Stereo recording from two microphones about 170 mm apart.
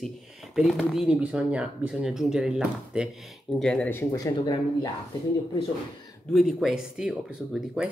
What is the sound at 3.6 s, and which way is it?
Speech, 5° left (ahead or behind).